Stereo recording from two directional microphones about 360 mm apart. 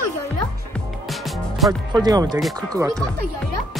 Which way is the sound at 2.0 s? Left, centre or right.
Centre.